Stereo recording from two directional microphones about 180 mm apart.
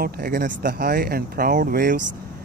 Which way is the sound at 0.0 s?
55° right (ahead or behind).